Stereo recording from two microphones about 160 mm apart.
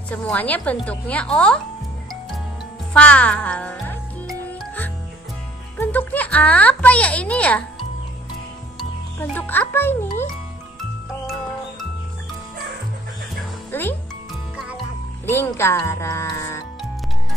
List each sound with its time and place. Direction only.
0.1 s speech: 10° left (ahead or behind)
2.9 s speech: 10° left (ahead or behind)
4.3 s music: 5° left (ahead or behind)
5.8 s speech: 10° left (ahead or behind)
9.2 s speech: 10° left (ahead or behind)
13.7 s music: 15° left (ahead or behind)
15.2 s music: 15° left (ahead or behind)